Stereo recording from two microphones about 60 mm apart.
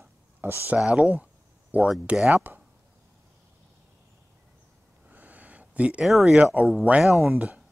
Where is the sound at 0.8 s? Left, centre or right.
Centre.